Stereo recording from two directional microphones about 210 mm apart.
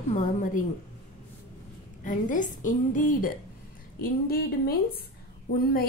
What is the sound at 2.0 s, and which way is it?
A woman's voice, 40° left (ahead or behind).